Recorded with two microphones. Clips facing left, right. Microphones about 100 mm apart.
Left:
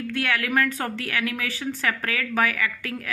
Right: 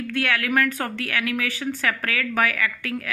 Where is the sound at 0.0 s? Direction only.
25° left (ahead or behind).